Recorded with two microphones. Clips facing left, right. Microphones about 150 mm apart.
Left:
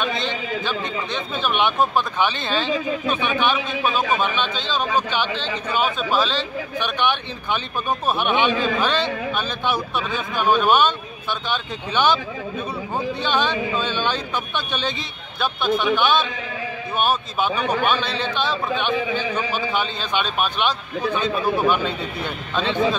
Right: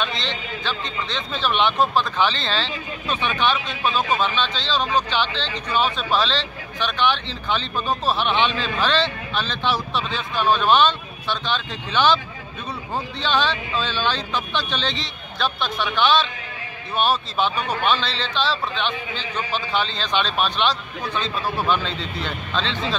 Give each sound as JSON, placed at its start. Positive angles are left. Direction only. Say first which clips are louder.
{"t": 0.0, "sound": "speech", "louder": "left 3 dB", "side_deg": 10}
{"t": 13.2, "sound": "speech", "louder": "right 1 dB", "side_deg": 15}